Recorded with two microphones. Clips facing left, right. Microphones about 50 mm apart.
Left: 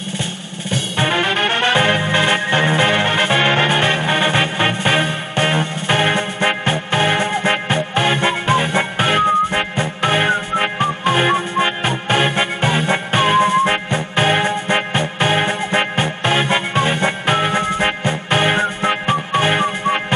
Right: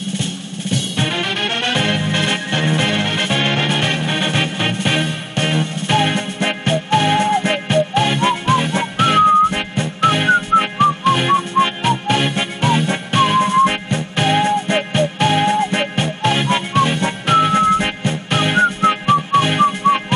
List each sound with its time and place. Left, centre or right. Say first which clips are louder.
0.7 s music: left 2 dB; left